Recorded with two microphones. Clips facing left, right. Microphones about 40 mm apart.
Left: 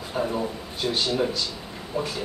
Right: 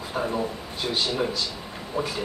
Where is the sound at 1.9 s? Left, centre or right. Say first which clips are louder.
Even; right.